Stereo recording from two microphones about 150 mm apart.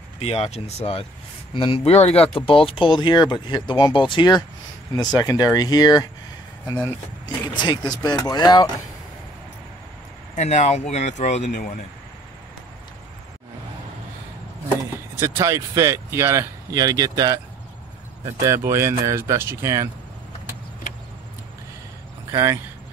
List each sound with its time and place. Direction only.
0.2 s speech: 40° left (ahead or behind)
10.3 s speech: 50° left (ahead or behind)
15.1 s speech: 20° right (ahead or behind)
22.3 s speech: 25° right (ahead or behind)